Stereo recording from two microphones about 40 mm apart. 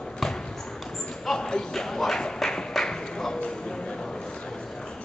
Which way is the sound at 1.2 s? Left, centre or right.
Centre.